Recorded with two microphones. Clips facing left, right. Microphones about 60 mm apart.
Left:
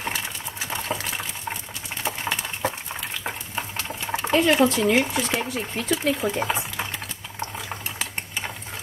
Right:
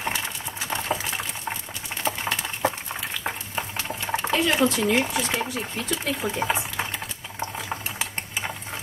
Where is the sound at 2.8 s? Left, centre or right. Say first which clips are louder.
Right 1 dB; centre.